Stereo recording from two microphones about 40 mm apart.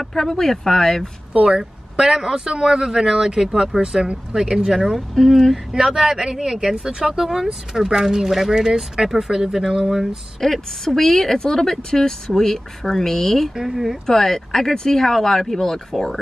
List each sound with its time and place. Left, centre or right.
0.0 s speech: centre
1.6 s speech: centre
5.1 s speech: centre
5.7 s speech: centre
7.7 s speech: centre
10.4 s speech: centre
13.6 s speech: centre
14.0 s speech: centre